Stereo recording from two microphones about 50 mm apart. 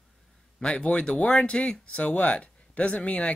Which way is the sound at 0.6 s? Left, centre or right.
Left.